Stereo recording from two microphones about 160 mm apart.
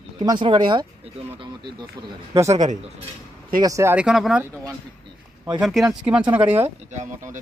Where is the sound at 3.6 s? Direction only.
20° right (ahead or behind).